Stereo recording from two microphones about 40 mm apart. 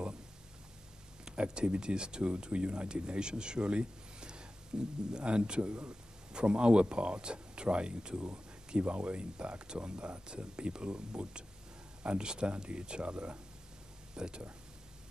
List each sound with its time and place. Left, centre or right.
1.3 s speech: right